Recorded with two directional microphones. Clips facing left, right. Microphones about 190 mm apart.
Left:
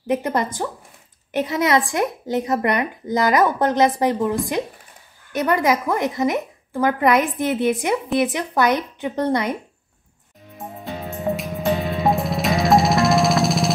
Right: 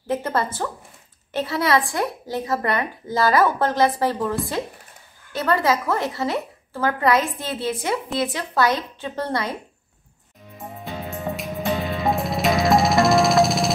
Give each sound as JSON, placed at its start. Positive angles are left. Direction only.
{"t": 0.1, "sound": "a woman's voice", "side_deg": 20}
{"t": 11.1, "sound": "music", "side_deg": 0}